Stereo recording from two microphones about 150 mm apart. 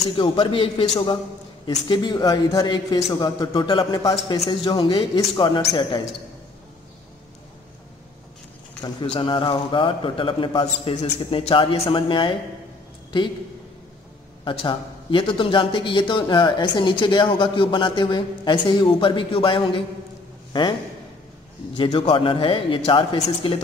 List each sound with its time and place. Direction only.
0.1 s a man's voice: 35° left (ahead or behind)
8.8 s a man's voice: 30° left (ahead or behind)
14.4 s a man's voice: 35° left (ahead or behind)
21.7 s a man's voice: 35° left (ahead or behind)